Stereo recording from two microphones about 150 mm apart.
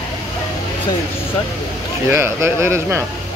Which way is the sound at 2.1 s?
15° right (ahead or behind).